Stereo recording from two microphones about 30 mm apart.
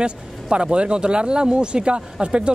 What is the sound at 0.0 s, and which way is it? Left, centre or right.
Speech, right.